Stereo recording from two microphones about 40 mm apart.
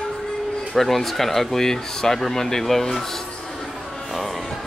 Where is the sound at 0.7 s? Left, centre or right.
Centre.